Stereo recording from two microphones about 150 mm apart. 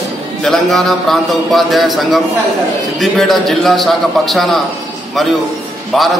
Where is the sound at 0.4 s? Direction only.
Centre (ahead or behind).